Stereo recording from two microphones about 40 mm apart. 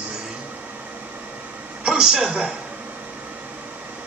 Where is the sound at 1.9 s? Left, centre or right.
Centre.